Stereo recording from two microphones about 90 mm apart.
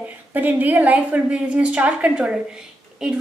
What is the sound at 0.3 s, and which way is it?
A woman's voice, 20° right (ahead or behind).